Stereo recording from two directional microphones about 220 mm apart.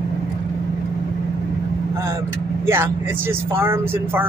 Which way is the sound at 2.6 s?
10° right (ahead or behind).